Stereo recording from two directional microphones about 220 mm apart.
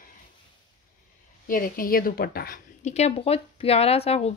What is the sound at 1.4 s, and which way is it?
A woman's voice, 40° left (ahead or behind).